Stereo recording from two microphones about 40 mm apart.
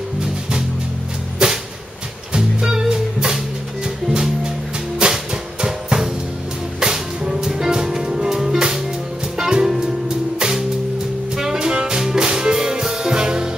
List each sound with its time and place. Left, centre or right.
0.2 s music: centre
4.9 s music: centre
11.3 s jazz: centre
11.6 s music: right